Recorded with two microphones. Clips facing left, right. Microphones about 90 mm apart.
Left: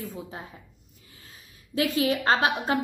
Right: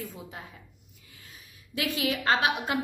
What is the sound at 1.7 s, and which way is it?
A woman's voice, 35° left (ahead or behind).